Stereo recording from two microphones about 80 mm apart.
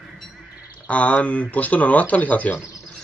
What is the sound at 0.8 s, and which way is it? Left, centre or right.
Speech, centre.